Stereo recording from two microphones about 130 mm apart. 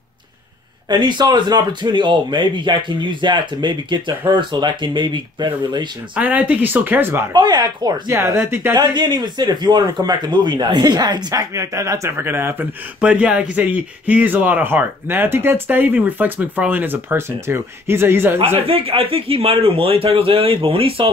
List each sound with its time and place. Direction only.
0.8 s speech: 35° right (ahead or behind)
6.1 s speech: 10° right (ahead or behind)
7.3 s speech: 30° right (ahead or behind)
8.4 s speech: 15° right (ahead or behind)
8.7 s speech: 30° right (ahead or behind)
18.4 s speech: 45° right (ahead or behind)